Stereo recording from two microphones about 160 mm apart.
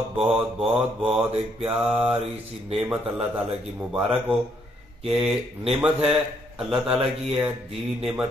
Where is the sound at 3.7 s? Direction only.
10° right (ahead or behind).